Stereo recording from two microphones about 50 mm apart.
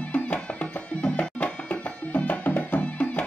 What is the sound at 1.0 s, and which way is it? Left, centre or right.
Music, left.